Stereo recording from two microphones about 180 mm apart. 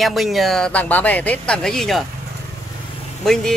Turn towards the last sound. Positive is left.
turn(degrees=0)  # may be behind; listen again after turning